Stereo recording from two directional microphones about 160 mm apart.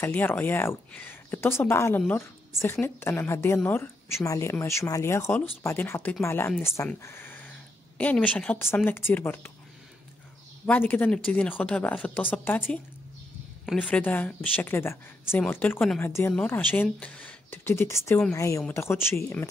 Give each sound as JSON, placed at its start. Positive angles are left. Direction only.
{"t": 0.0, "sound": "speech", "side_deg": 10}
{"t": 7.0, "sound": "a sound", "side_deg": 15}
{"t": 8.0, "sound": "speech", "side_deg": 10}
{"t": 10.6, "sound": "speech", "side_deg": 10}